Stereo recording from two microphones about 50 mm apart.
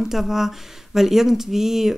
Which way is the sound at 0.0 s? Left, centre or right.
Centre.